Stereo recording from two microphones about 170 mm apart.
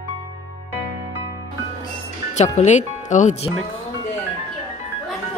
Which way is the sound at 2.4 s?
45° left (ahead or behind).